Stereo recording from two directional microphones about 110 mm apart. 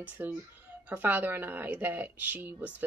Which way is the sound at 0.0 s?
15° right (ahead or behind).